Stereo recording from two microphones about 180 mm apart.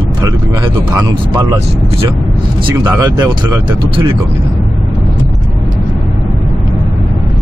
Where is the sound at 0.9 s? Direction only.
20° right (ahead or behind).